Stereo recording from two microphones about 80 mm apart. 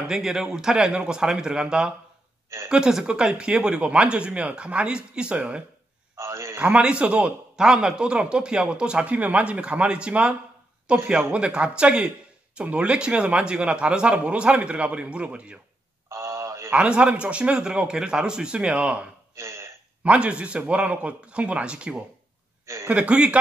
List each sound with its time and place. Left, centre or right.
0.1 s a man's voice: centre
6.1 s a sound: right
6.7 s a man's voice: centre
16.1 s a sound: right
16.7 s a man's voice: centre
19.3 s burping: right
20.0 s a man's voice: centre